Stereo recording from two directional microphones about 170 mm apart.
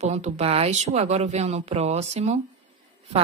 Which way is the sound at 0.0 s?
40° right (ahead or behind).